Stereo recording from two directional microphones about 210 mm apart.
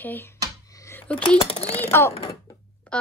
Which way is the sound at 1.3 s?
30° left (ahead or behind).